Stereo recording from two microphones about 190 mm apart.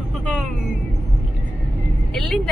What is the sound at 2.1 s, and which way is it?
Speech, centre (ahead or behind).